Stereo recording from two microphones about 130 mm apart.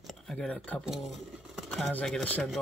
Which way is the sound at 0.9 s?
Centre (ahead or behind).